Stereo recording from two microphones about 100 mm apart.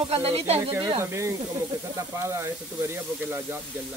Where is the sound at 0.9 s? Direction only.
30° right (ahead or behind).